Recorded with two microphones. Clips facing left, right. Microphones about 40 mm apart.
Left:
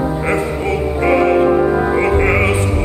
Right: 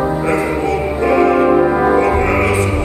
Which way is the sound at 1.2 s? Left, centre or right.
Right.